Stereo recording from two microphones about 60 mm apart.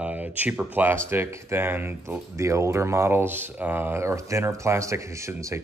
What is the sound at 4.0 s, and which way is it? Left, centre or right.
Speech, right.